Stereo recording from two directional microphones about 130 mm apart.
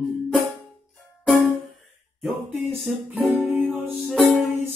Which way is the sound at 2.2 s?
15° right (ahead or behind).